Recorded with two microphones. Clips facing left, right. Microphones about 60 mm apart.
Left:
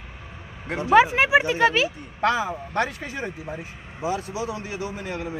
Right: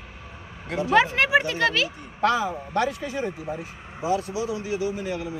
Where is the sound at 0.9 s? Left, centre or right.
Centre.